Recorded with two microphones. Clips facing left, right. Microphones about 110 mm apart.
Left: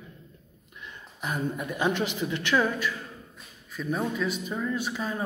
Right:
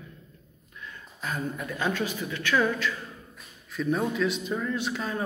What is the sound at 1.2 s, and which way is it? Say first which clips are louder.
A man's voice: left 2 dB; 15° left (ahead or behind).